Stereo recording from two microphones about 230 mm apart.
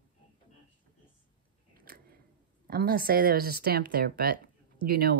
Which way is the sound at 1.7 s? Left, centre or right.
Right.